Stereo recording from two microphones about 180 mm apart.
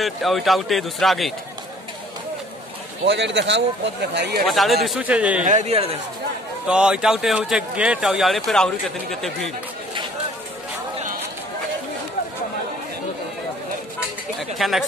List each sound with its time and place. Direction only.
0.0 s speech: centre (ahead or behind)
3.1 s speech: 75° right (ahead or behind)
4.5 s a man's voice: centre (ahead or behind)
5.4 s speech: 40° right (ahead or behind)
6.7 s speech: 5° right (ahead or behind)
14.6 s speech: centre (ahead or behind)